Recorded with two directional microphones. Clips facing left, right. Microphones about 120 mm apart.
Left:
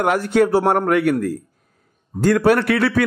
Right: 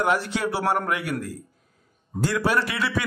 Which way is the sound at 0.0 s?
55° left (ahead or behind).